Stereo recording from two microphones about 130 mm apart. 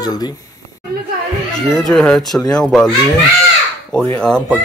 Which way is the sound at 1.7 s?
Centre (ahead or behind).